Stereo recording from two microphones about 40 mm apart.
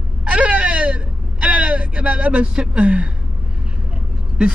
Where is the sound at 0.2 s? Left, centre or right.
Right.